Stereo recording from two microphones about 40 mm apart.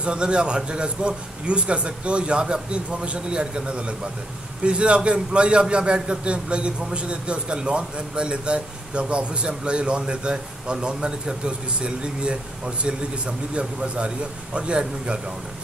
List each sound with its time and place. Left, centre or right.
0.0 s a man's voice: right